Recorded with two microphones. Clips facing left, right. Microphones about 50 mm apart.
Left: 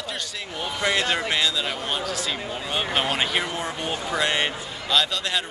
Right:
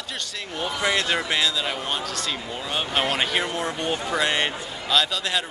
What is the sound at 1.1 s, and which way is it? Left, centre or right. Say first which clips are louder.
Speech: even; centre.